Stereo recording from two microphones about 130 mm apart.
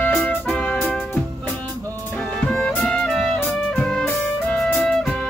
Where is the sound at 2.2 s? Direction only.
5° left (ahead or behind).